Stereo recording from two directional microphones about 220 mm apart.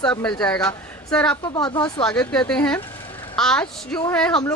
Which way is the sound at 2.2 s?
5° left (ahead or behind).